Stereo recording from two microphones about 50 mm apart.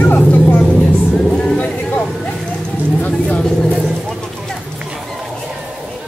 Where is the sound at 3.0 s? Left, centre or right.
Left.